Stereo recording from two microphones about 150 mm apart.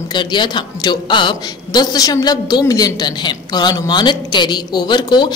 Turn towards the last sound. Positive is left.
turn(degrees=30)  # may be behind; listen again after turning